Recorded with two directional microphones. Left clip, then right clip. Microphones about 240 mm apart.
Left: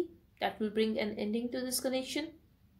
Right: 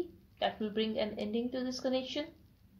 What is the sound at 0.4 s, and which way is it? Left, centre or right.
Speech, left.